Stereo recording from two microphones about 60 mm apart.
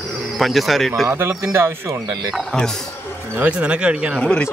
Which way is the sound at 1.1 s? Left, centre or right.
Right.